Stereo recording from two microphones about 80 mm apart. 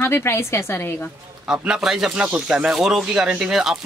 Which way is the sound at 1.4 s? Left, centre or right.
Centre.